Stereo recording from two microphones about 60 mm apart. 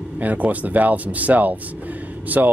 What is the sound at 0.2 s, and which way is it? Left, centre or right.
Speech, right.